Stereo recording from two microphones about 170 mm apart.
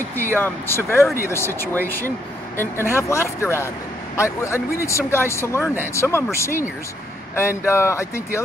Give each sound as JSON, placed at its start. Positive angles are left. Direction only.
{"t": 0.4, "sound": "speech", "side_deg": 15}
{"t": 7.3, "sound": "speech", "side_deg": 15}